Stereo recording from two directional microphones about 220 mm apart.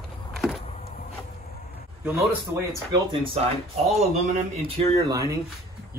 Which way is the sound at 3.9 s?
30° right (ahead or behind).